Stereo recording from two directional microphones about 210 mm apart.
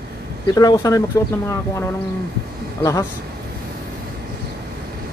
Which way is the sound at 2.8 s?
15° left (ahead or behind).